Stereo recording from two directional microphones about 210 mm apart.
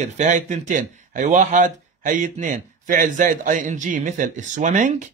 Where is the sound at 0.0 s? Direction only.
35° right (ahead or behind).